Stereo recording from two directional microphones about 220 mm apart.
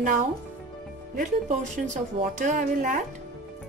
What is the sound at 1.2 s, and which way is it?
A woman's voice, 35° right (ahead or behind).